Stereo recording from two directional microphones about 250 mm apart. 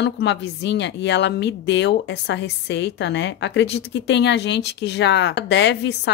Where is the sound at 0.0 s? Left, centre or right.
Left.